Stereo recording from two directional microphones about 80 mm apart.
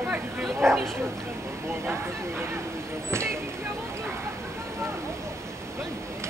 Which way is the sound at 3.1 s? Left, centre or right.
Right.